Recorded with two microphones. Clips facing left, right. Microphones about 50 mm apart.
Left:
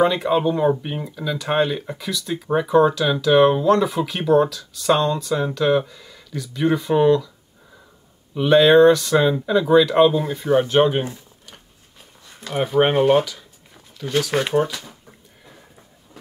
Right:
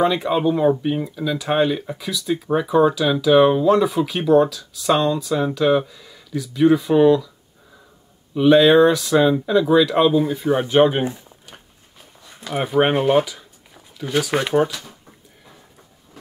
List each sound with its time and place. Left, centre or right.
0.0 s speech: centre
8.4 s speech: centre
11.1 s a sound: centre
12.3 s speech: centre